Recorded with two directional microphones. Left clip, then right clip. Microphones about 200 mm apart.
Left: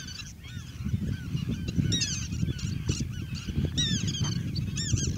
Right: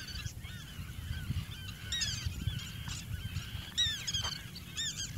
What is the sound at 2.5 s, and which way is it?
Fowl, 45° left (ahead or behind).